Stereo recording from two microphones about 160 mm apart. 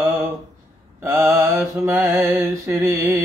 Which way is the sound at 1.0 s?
15° right (ahead or behind).